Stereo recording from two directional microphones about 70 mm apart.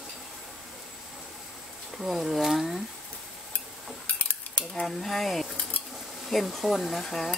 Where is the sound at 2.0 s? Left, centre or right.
Centre.